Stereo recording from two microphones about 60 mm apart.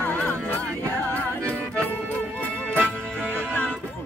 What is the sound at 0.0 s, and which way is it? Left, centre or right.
Music, left.